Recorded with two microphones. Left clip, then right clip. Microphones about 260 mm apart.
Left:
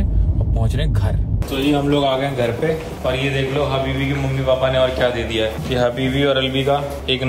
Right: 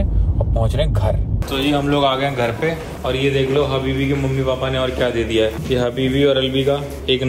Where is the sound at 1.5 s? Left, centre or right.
Centre.